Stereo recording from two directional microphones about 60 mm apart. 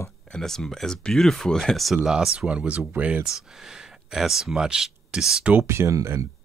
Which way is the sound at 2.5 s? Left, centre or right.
Right.